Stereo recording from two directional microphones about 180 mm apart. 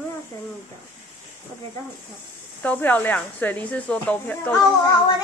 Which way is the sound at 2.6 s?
10° left (ahead or behind).